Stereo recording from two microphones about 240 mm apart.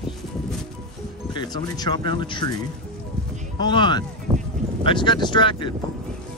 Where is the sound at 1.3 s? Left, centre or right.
Centre.